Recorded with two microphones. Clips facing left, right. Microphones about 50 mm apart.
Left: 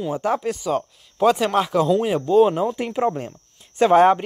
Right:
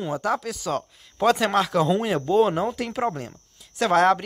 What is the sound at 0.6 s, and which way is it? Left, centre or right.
Speech, centre.